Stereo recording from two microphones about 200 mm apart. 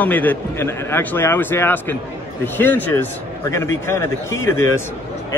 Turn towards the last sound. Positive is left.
turn(degrees=15)  # may be behind; listen again after turning